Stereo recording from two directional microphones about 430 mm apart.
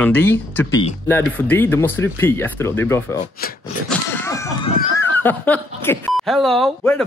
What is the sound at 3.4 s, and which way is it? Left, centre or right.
Speech, left.